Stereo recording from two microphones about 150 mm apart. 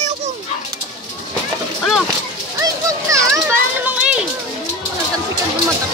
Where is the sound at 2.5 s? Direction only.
20° right (ahead or behind).